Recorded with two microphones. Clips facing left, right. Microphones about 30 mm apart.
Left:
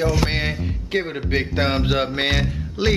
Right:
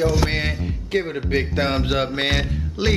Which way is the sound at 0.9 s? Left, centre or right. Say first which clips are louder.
Right 1 dB; centre.